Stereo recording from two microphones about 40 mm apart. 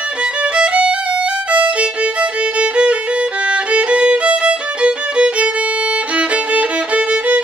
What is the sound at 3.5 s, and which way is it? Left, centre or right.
Music, right.